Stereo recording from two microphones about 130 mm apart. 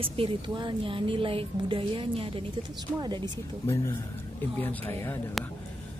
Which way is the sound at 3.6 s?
25° left (ahead or behind).